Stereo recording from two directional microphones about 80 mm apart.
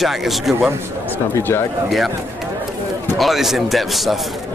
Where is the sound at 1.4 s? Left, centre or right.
Left.